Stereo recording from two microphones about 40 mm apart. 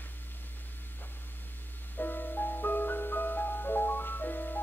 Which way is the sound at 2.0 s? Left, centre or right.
Left.